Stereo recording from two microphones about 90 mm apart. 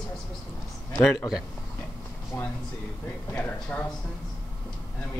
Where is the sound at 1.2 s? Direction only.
40° left (ahead or behind).